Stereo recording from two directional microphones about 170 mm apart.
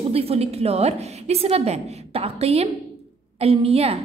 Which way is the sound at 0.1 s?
35° right (ahead or behind).